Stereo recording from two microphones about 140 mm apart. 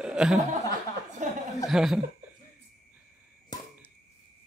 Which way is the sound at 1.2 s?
60° right (ahead or behind).